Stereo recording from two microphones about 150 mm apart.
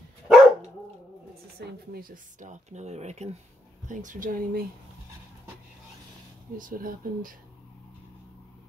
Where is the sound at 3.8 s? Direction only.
60° right (ahead or behind).